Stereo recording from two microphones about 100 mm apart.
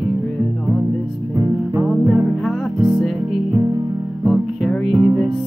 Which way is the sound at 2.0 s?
20° right (ahead or behind).